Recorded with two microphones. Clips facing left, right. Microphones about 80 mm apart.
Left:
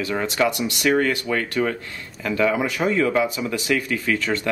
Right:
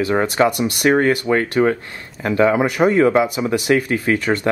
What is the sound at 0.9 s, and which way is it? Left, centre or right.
Speech, right.